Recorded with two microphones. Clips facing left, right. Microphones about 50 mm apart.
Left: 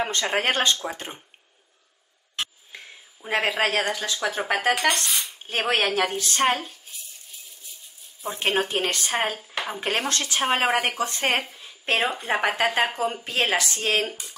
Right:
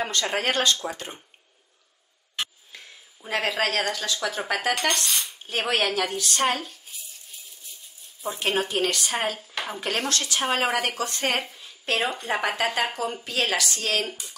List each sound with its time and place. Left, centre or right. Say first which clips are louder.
0.0 s a woman's voice: left 2 dB; left
2.7 s a woman's voice: left 3 dB; left
6.7 s rattle: even; centre
8.2 s speech: even; centre
8.6 s a woman's voice: even; left
11.4 s a sound: even; centre
11.8 s a woman's voice: left 2 dB; left